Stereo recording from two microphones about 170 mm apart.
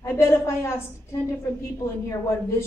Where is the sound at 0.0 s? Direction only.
15° left (ahead or behind).